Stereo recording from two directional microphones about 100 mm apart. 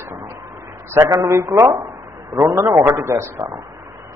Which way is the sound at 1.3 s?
30° right (ahead or behind).